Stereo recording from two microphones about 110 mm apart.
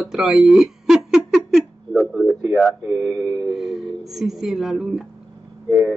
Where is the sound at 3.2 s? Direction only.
25° right (ahead or behind).